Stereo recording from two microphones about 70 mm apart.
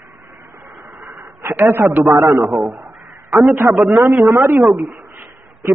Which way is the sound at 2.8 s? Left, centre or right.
Right.